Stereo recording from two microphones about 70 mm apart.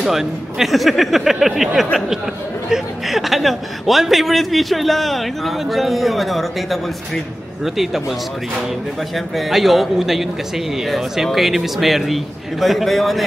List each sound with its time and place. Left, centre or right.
0.0 s a man's voice: centre
9.1 s a man's voice: centre